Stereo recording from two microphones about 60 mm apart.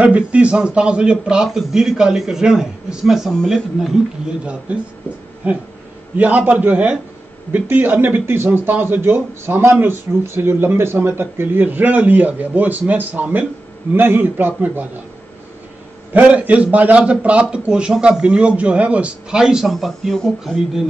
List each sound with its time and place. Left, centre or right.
0.0 s a man's voice: right; by 3.9 s centre
4.7 s a man's voice: right
7.6 s speech: right
13.9 s speech: right
16.3 s a man's voice: right
19.4 s a man's voice: centre